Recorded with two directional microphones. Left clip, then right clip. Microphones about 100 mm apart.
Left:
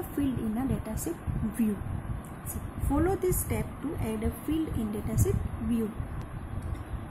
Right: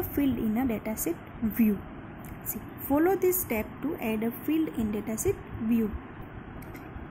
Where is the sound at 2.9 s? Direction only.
50° right (ahead or behind).